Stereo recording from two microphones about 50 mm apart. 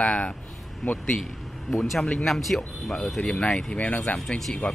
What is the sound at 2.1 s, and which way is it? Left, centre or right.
A man's voice, centre.